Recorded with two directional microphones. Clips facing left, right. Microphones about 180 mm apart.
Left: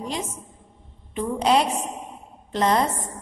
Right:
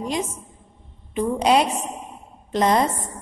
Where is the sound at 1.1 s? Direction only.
15° right (ahead or behind).